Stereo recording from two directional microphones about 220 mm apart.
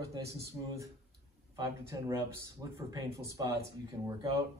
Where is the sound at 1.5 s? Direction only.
15° right (ahead or behind).